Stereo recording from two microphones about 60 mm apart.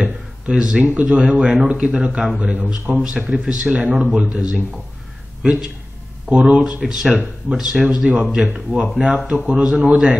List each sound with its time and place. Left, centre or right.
0.0 s a sound: centre
0.8 s speech: right
2.9 s speech: centre
3.9 s a man's voice: centre
6.8 s speech: centre
9.5 s speech: centre